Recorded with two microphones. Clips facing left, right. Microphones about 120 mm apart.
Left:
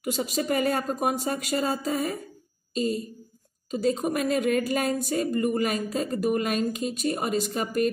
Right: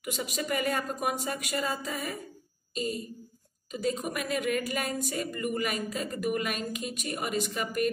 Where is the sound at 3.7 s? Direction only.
30° left (ahead or behind).